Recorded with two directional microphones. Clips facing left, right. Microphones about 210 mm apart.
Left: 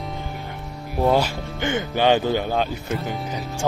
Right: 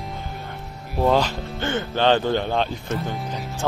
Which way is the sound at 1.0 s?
10° left (ahead or behind).